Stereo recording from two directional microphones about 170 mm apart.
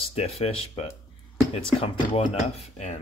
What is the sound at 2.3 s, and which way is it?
Speech, 40° left (ahead or behind).